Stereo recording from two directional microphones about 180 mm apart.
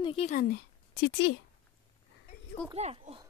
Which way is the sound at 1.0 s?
80° left.